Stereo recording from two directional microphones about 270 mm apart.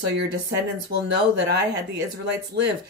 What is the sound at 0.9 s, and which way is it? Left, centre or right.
Speech, right.